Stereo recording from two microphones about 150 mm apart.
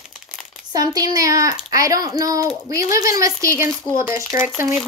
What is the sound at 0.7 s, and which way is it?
Speech, 25° right (ahead or behind).